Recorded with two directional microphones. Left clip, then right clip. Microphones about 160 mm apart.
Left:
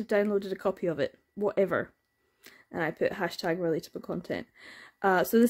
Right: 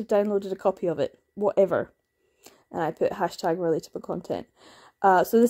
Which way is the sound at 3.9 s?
20° left (ahead or behind).